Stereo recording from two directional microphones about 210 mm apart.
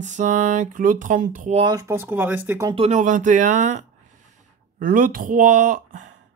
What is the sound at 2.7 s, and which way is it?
Speech, 35° right (ahead or behind).